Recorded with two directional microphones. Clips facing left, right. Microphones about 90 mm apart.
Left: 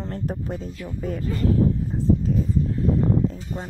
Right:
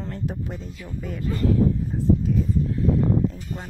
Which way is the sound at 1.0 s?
40° left (ahead or behind).